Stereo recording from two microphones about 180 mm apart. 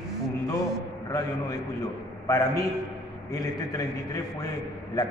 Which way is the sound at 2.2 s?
15° left (ahead or behind).